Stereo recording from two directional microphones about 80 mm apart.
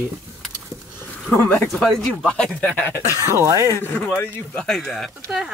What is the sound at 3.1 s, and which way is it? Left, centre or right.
Speech, right.